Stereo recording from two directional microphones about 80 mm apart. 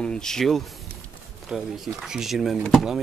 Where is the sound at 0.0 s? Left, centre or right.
Centre.